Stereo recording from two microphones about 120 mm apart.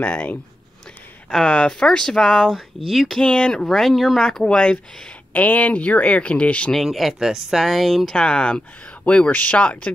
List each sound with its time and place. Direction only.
0.0 s speech: 10° left (ahead or behind)
6.8 s speech: centre (ahead or behind)